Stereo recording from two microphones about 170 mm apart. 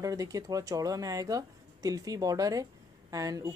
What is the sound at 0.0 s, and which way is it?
Speech, 20° right (ahead or behind).